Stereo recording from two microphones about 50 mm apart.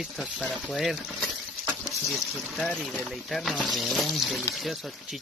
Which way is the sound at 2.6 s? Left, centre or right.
Left.